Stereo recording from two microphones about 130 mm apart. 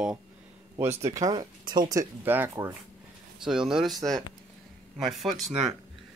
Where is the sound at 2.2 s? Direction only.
15° right (ahead or behind).